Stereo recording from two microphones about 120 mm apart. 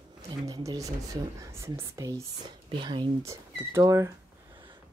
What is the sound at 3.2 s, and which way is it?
Speech, 25° right (ahead or behind).